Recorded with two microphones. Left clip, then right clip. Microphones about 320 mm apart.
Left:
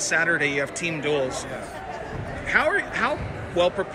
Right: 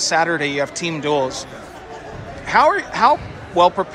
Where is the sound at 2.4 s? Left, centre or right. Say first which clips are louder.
Right 7 dB; centre.